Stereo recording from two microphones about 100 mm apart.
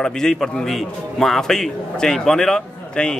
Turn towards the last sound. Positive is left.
turn(degrees=5)  # may be behind; listen again after turning